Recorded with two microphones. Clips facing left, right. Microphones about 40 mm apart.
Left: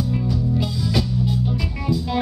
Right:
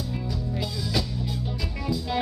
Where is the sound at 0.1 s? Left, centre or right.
Centre.